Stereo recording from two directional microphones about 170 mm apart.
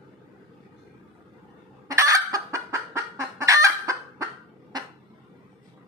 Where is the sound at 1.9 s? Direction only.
20° right (ahead or behind).